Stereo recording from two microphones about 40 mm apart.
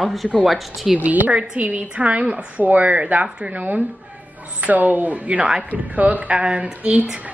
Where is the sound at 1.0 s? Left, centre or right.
Right.